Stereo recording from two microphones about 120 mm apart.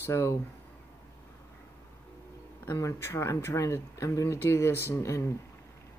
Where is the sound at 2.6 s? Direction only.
20° left (ahead or behind).